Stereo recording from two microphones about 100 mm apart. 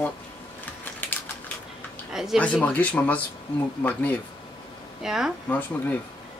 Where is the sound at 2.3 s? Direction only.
10° left (ahead or behind).